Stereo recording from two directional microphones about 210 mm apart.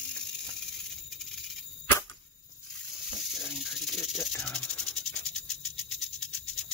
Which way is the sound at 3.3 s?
Centre (ahead or behind).